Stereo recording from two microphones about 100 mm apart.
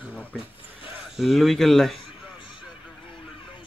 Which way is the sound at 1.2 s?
Centre (ahead or behind).